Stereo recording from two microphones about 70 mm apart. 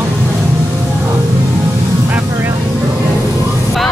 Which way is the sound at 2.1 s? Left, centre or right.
Right.